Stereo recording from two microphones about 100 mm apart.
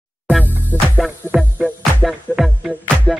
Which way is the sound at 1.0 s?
5° right (ahead or behind).